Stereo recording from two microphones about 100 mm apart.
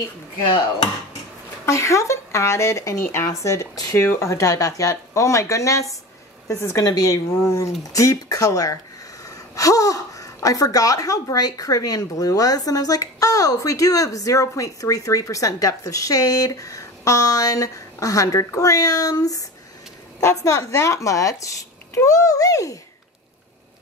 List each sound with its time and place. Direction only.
1.7 s a woman's voice: 30° left (ahead or behind)